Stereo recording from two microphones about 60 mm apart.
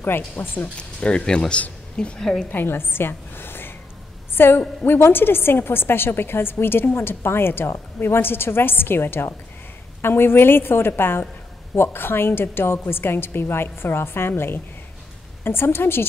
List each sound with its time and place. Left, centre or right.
0.0 s a woman's voice: left
0.7 s speech: centre
2.5 s a woman's voice: left